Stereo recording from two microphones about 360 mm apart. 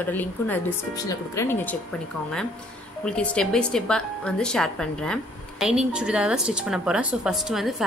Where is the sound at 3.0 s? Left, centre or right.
Centre.